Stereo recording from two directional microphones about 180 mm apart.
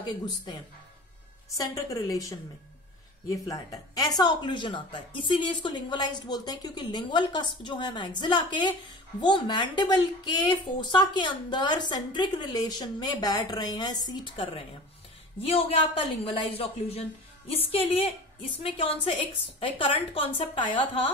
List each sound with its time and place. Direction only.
0.0 s speech: 25° left (ahead or behind)
1.6 s a woman's voice: 20° left (ahead or behind); by 15.8 s 35° left (ahead or behind)
17.5 s a woman's voice: 35° left (ahead or behind)